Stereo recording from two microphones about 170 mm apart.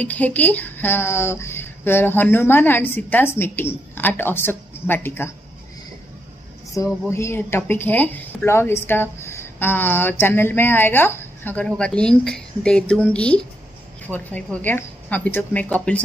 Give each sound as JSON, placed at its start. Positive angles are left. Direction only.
{"t": 0.0, "sound": "speech", "side_deg": 10}
{"t": 6.7, "sound": "speech", "side_deg": 15}